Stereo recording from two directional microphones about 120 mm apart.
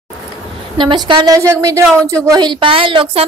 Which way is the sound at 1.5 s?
25° right (ahead or behind).